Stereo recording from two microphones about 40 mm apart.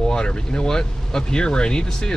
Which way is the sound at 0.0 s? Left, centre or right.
Centre.